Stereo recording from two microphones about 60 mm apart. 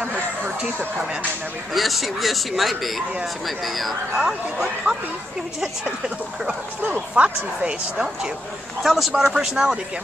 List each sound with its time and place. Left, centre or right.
0.0 s a sound: centre
1.7 s speech: centre
4.2 s speech: centre